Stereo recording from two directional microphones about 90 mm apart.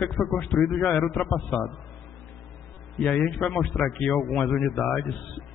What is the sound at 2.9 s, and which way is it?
A man's voice, 10° left (ahead or behind).